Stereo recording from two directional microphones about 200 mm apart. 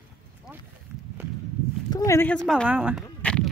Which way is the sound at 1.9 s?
15° left (ahead or behind).